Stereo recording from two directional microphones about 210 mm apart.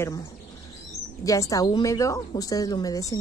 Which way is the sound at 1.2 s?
15° left (ahead or behind).